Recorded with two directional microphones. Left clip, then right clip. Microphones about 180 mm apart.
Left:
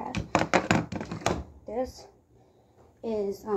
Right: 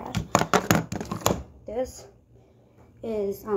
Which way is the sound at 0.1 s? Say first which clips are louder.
Right 3 dB; 75° right (ahead or behind).